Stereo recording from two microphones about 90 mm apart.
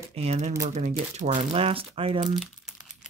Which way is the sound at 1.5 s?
90° right.